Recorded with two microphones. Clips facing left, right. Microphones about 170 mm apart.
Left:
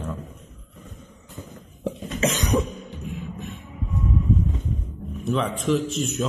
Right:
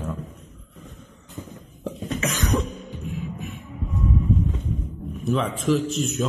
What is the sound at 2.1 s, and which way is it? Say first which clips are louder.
Cough: left 3 dB; 25° left (ahead or behind).